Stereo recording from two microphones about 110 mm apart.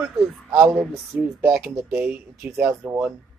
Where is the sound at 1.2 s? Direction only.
20° right (ahead or behind).